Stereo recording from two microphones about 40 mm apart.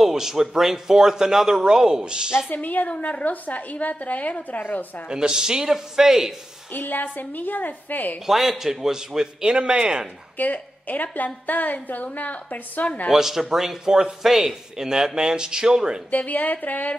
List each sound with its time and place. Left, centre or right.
0.0 s a man's voice: centre
2.5 s a woman's voice: left
5.0 s a man's voice: centre
6.7 s a woman's voice: left
8.3 s a man's voice: centre; by 10.0 s right
10.3 s a woman's voice: left
13.1 s a man's voice: centre
16.1 s a woman's voice: left